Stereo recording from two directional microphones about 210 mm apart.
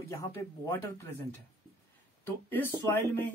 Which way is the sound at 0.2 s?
15° left (ahead or behind).